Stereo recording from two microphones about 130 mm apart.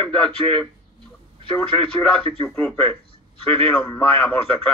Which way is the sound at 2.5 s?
15° left (ahead or behind).